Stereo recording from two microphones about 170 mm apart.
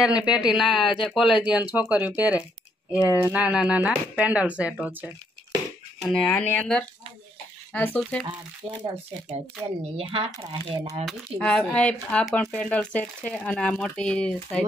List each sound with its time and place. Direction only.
0.2 s speech: 5° right (ahead or behind)
6.1 s speech: 10° left (ahead or behind)
8.6 s speech: 35° right (ahead or behind)
9.9 s speech: 30° right (ahead or behind)
11.1 s speech: centre (ahead or behind)